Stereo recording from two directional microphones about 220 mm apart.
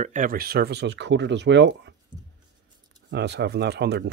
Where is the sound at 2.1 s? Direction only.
20° right (ahead or behind).